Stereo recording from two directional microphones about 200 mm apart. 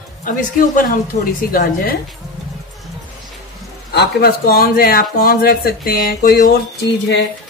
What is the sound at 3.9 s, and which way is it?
Speech, 50° left (ahead or behind).